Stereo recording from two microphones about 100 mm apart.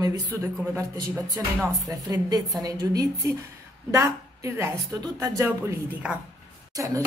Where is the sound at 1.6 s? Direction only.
30° right (ahead or behind).